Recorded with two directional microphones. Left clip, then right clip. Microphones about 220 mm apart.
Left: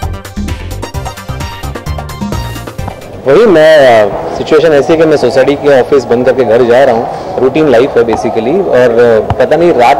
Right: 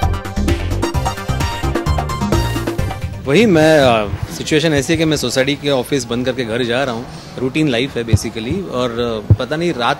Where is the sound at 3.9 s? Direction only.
30° right (ahead or behind).